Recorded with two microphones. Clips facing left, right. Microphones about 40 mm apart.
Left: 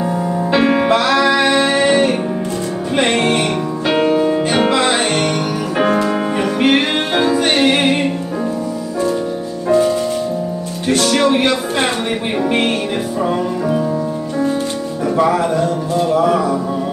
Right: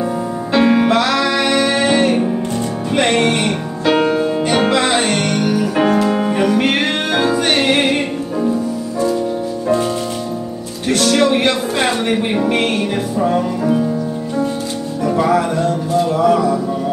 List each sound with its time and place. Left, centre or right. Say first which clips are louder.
0.5 s music: right 1 dB; centre
3.3 s music: left 2 dB; centre
7.4 s music: left 1 dB; centre
11.1 s music: right 1 dB; centre
11.3 s a sound: even; centre
12.4 s music: left 3 dB; centre
15.1 s music: even; centre
16.3 s music: right 2 dB; centre